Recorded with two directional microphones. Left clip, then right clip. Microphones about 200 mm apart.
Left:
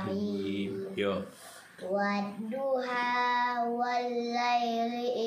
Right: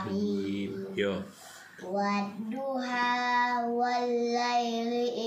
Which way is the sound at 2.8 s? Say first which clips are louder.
Right 4 dB; 15° left (ahead or behind).